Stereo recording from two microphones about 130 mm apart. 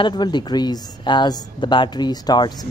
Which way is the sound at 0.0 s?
35° left (ahead or behind).